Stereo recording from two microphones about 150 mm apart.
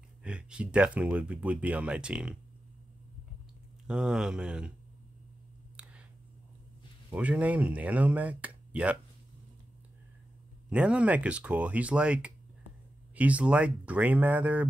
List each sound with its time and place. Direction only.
0.2 s speech: 5° right (ahead or behind)
3.8 s speech: 5° right (ahead or behind)
7.2 s speech: 10° right (ahead or behind)
10.7 s speech: 10° right (ahead or behind)